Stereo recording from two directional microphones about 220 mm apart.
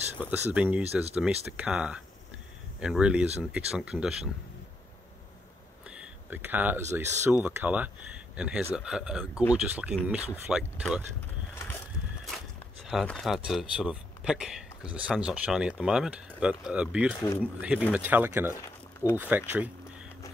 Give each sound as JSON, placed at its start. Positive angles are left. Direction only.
{"t": 0.2, "sound": "speech", "side_deg": -5}
{"t": 5.9, "sound": "speech", "side_deg": -5}
{"t": 12.8, "sound": "speech", "side_deg": 0}
{"t": 18.5, "sound": "a sound", "side_deg": 10}
{"t": 19.1, "sound": "speech", "side_deg": -10}